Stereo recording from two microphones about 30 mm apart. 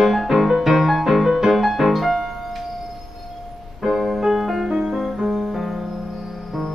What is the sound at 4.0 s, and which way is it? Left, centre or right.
Music, centre.